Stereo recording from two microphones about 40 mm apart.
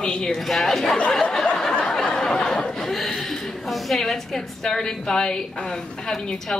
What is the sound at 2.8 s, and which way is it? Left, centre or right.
Chuckle, centre.